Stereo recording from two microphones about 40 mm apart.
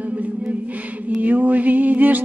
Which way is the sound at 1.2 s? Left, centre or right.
Right.